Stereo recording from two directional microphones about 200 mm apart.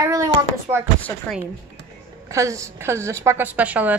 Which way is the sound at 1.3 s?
5° left (ahead or behind).